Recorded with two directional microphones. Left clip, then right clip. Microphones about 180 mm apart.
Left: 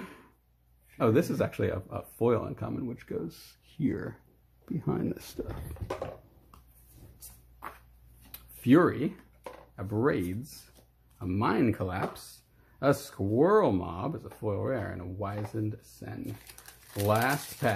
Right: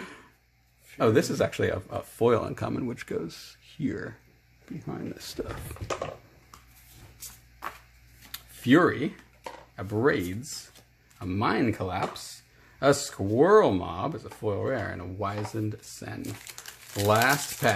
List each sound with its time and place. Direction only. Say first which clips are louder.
0.0 s a sound: right 4 dB; centre (ahead or behind)
0.9 s speech: right 3 dB; centre (ahead or behind)
3.3 s speech: right 4 dB; 5° left (ahead or behind)
4.7 s speech: left 4 dB; 35° left (ahead or behind)
5.4 s speech: right 4 dB; 10° right (ahead or behind)
8.3 s a sound: right 2 dB; centre (ahead or behind)
11.1 s speech: right 2 dB; centre (ahead or behind)